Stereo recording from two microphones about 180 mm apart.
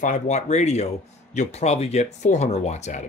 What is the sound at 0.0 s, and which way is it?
Speech, 40° left (ahead or behind).